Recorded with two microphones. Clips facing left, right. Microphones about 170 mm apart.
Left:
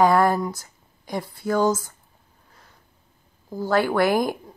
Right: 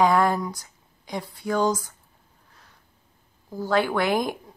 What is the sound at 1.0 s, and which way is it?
Speech, 15° right (ahead or behind).